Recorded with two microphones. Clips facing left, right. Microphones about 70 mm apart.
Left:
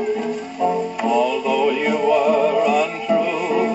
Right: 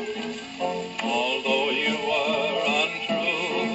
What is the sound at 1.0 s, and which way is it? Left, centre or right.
Music, centre.